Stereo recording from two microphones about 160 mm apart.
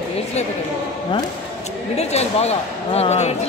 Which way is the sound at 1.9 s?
40° left (ahead or behind).